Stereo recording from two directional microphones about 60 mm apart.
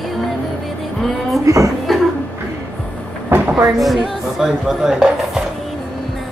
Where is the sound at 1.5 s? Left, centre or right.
Right.